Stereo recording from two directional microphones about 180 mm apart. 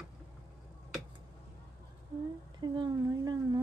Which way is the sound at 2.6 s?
25° right (ahead or behind).